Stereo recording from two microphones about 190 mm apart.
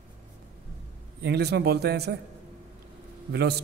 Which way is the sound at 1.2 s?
60° right (ahead or behind).